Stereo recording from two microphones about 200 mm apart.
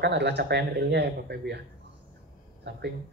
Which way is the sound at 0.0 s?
60° right (ahead or behind).